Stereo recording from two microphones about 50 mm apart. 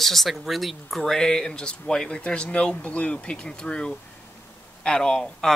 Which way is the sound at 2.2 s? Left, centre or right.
Left.